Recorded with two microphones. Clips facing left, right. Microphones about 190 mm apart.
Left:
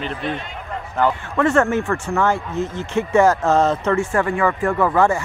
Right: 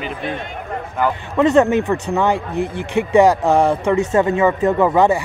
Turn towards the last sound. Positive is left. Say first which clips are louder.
# right 3 dB
turn(degrees=-20)  # may be behind; listen again after turning